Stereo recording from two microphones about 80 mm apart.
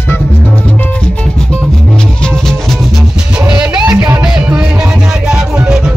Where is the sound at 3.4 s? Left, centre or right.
Centre.